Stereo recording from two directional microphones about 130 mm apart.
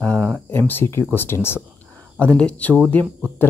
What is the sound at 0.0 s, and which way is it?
Speech, 10° left (ahead or behind).